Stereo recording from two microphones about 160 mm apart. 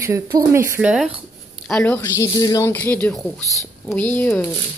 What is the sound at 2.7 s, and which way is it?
Speech, 10° left (ahead or behind).